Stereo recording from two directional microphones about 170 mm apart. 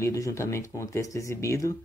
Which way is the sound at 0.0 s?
20° left (ahead or behind).